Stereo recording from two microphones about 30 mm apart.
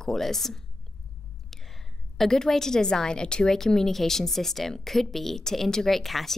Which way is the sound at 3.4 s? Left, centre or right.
Centre.